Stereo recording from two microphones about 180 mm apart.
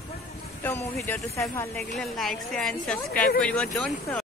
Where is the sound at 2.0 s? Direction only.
Centre (ahead or behind).